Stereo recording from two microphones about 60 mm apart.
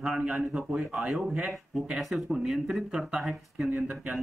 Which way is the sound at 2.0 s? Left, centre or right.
Centre.